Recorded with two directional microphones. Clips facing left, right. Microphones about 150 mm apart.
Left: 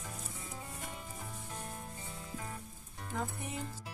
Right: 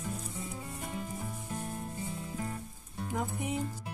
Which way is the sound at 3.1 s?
15° right (ahead or behind).